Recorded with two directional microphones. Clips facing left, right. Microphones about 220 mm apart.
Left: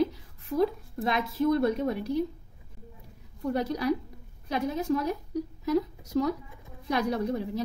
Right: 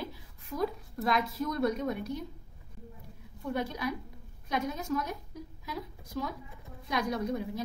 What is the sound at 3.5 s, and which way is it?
A woman's voice, 35° left (ahead or behind).